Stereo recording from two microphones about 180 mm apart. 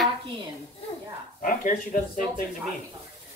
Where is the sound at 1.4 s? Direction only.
45° left (ahead or behind).